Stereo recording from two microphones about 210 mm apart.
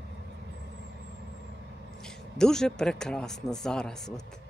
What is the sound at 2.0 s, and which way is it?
Speech, 5° left (ahead or behind).